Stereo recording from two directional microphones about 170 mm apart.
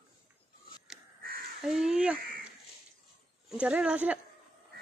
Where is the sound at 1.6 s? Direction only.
5° right (ahead or behind).